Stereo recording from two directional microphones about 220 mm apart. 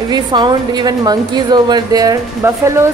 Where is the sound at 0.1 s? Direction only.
20° right (ahead or behind).